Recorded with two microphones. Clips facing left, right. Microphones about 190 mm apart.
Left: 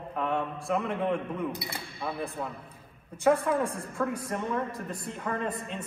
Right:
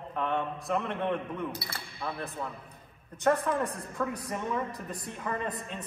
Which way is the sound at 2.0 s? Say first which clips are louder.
Left 2 dB; 5° left (ahead or behind).